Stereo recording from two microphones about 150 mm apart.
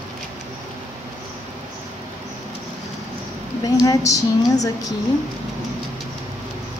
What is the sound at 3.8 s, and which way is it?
Female singing, 20° left (ahead or behind).